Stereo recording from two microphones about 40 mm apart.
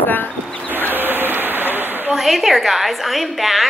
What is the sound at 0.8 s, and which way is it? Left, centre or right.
Rain on surface, right.